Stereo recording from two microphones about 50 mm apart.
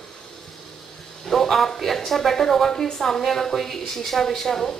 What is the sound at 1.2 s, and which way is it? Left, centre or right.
Speech, centre.